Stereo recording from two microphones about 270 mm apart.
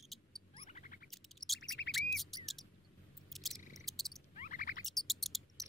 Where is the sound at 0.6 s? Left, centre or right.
Left.